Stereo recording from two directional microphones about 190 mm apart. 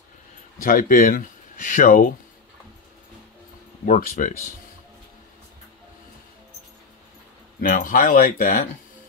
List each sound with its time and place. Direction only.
0.6 s speech: 50° left (ahead or behind)
3.8 s speech: 45° left (ahead or behind)
7.6 s speech: 45° left (ahead or behind)